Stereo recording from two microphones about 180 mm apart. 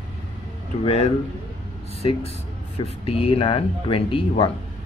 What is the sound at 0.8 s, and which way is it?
Speech, 35° left (ahead or behind).